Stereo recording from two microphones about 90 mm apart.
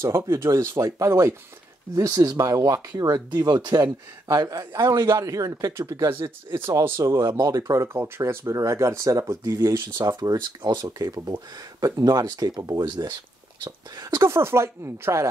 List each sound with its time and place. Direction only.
0.0 s a man's voice: 30° right (ahead or behind); by 3.8 s 55° right (ahead or behind)
3.8 s a man's voice: 45° right (ahead or behind)
10.3 s speech: 50° right (ahead or behind)
14.2 s a man's voice: 30° right (ahead or behind)